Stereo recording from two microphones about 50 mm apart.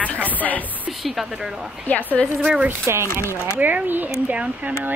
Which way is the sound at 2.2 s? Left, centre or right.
Centre.